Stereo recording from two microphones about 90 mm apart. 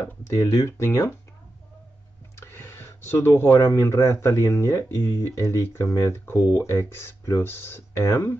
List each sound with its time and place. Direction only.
0.4 s speech: 45° left (ahead or behind)
0.7 s speech: 30° left (ahead or behind)
2.3 s speech: 25° left (ahead or behind)